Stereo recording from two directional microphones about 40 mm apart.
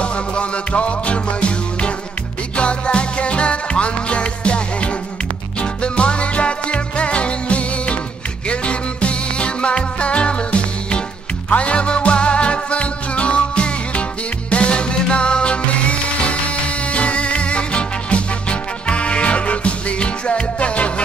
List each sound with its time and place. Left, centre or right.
0.0 s music: left